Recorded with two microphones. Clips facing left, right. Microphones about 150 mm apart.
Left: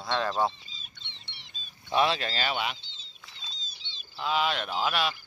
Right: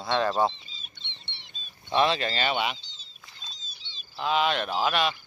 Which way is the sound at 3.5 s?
80° left.